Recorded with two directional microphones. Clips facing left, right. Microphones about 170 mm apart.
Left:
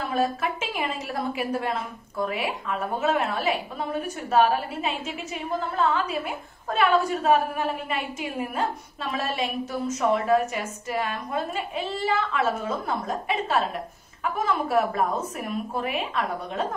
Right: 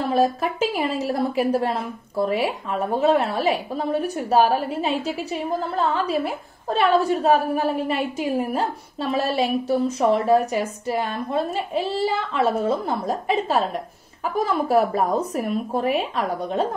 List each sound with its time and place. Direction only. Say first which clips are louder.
0.1 s a woman's voice: right 4 dB; 35° right (ahead or behind)